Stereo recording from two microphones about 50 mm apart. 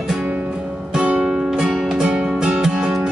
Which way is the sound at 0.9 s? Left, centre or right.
Centre.